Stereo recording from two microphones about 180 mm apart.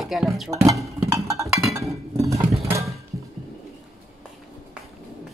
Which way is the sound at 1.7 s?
15° right (ahead or behind).